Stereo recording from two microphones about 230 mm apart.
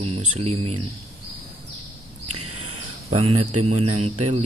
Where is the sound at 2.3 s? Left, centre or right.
Right.